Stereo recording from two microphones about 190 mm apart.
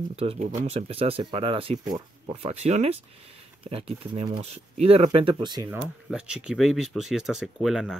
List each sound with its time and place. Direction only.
0.1 s speech: 30° right (ahead or behind)
6.0 s speech: 5° right (ahead or behind)